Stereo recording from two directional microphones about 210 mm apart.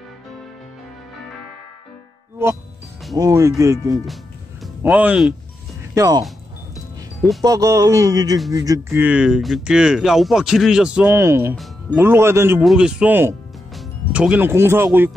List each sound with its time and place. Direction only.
3.2 s speech: 15° right (ahead or behind)
5.9 s speech: 20° right (ahead or behind)
7.4 s speech: 15° right (ahead or behind)